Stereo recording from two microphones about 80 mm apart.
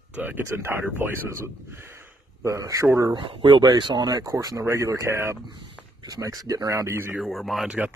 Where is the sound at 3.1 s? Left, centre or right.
Right.